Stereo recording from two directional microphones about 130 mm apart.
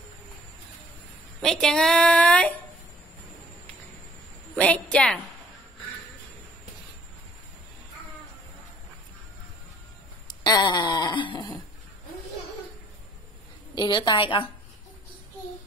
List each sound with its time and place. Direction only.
1.4 s a woman's voice: 5° left (ahead or behind)
4.6 s a woman's voice: 10° left (ahead or behind)
10.2 s a sound: 30° left (ahead or behind)
13.7 s a woman's voice: 35° left (ahead or behind)